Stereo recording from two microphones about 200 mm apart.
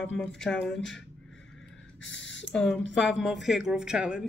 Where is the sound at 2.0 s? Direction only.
65° left (ahead or behind).